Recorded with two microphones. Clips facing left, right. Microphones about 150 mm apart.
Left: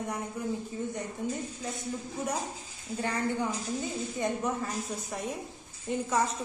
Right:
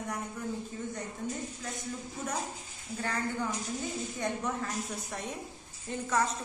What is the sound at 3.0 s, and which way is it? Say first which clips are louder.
A woman's voice: left 3 dB; 20° left (ahead or behind).